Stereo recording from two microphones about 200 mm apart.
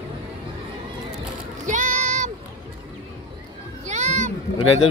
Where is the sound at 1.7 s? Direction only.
40° right (ahead or behind).